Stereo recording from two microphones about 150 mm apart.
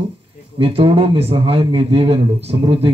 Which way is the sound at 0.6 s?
35° right (ahead or behind).